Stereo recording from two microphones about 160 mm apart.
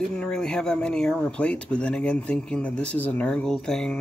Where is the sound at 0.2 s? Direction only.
5° left (ahead or behind).